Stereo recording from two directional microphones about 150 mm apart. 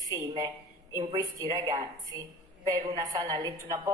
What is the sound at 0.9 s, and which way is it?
A woman's voice, 20° right (ahead or behind).